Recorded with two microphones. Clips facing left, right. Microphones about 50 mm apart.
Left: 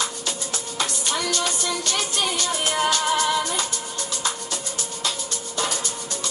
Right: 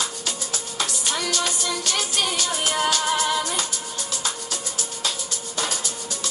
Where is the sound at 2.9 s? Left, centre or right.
Left.